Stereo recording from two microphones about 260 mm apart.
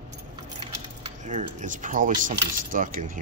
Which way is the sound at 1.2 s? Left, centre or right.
Right.